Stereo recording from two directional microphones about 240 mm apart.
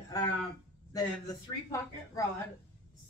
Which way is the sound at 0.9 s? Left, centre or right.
Centre.